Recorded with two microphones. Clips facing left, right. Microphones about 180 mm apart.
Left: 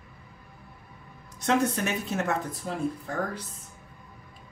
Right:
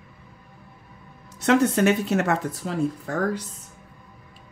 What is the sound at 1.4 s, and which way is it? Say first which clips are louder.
Speech: right 7 dB; 75° right (ahead or behind).